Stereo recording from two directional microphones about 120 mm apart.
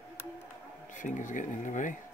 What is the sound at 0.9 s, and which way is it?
Speech, 90° left.